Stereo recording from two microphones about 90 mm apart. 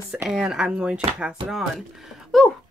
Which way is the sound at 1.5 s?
Centre (ahead or behind).